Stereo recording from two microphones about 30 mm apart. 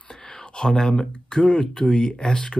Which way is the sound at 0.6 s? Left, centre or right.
Centre.